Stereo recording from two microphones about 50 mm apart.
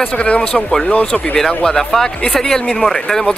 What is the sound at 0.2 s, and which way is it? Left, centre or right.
Speech, centre.